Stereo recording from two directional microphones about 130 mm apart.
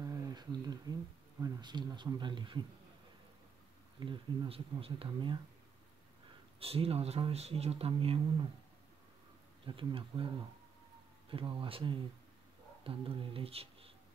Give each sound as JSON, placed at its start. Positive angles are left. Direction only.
{"t": 0.0, "sound": "a sound", "side_deg": -30}
{"t": 1.4, "sound": "speech", "side_deg": -35}
{"t": 4.0, "sound": "speech", "side_deg": -35}
{"t": 6.6, "sound": "speech", "side_deg": -50}
{"t": 9.7, "sound": "speech", "side_deg": -40}